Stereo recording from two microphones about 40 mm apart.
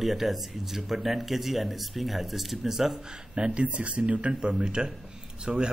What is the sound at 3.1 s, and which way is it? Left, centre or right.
Speech, right.